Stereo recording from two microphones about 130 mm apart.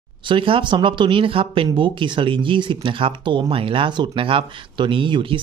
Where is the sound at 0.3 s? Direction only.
40° right (ahead or behind).